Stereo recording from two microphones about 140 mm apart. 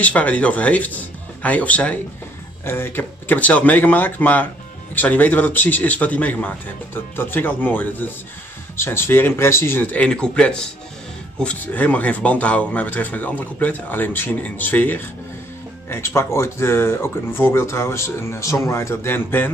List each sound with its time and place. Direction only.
0.0 s speech: 10° left (ahead or behind)